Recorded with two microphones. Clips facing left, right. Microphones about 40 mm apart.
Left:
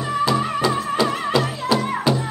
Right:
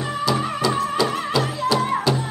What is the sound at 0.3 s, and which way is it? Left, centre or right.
Music, centre.